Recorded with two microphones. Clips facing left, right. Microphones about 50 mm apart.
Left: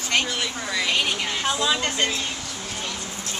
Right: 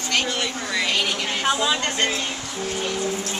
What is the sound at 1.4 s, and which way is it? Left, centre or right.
Speech, centre.